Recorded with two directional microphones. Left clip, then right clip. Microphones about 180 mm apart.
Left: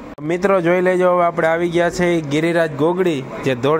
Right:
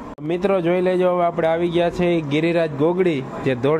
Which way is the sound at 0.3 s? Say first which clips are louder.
Left 4 dB; centre (ahead or behind).